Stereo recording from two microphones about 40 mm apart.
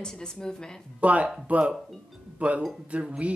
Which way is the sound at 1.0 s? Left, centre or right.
Right.